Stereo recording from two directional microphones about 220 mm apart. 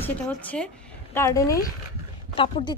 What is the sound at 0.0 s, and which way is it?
Speech, 5° left (ahead or behind).